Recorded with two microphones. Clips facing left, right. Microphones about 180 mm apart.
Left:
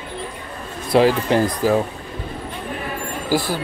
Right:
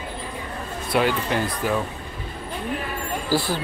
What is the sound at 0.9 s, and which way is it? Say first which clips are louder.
Speech: left 7 dB; 35° left (ahead or behind).